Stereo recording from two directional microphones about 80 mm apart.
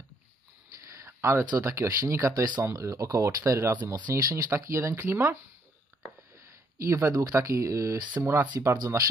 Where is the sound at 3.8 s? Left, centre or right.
Right.